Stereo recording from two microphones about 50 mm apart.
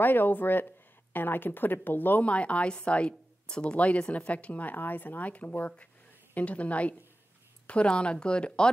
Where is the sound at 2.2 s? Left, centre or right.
Left.